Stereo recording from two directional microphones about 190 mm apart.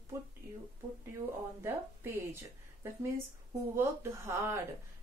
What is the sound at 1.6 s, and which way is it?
Speech, 10° right (ahead or behind).